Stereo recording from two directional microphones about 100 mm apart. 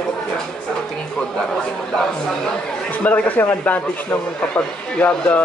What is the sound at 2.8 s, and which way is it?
A man's voice, 15° left (ahead or behind).